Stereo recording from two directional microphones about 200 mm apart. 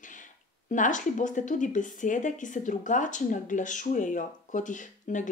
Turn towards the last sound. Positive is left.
turn(degrees=40)  # may be behind; listen again after turning